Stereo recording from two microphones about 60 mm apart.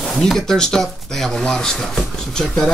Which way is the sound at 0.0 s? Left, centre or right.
Centre.